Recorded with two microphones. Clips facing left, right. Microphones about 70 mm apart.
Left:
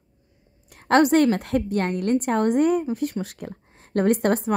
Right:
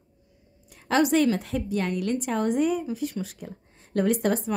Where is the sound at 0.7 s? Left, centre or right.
Left.